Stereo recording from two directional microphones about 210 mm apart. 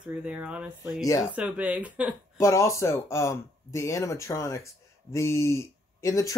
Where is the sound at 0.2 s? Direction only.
5° right (ahead or behind).